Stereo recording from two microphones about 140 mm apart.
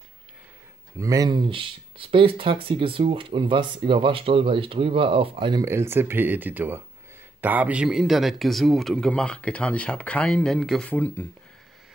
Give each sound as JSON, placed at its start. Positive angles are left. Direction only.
{"t": 0.9, "sound": "speech", "side_deg": -25}
{"t": 5.7, "sound": "speech", "side_deg": -20}